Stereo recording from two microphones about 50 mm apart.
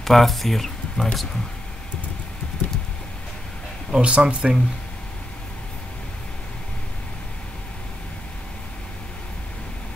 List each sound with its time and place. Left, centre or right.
0.0 s speech: centre
3.9 s speech: right